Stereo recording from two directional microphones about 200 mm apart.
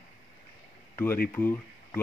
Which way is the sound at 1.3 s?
10° left (ahead or behind).